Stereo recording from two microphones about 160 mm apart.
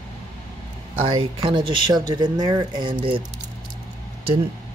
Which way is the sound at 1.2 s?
35° right (ahead or behind).